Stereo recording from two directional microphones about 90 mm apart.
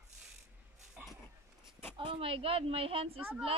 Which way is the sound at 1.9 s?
75° right (ahead or behind).